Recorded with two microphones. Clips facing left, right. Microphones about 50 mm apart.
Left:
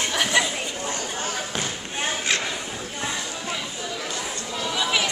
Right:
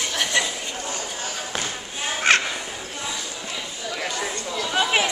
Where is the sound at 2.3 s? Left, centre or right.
Right.